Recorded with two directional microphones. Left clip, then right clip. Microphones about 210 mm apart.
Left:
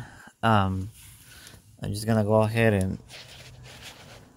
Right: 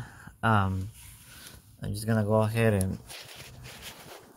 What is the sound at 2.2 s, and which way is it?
Speech, 30° left (ahead or behind).